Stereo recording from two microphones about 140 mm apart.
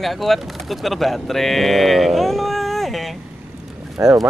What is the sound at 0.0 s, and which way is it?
Speech, centre (ahead or behind).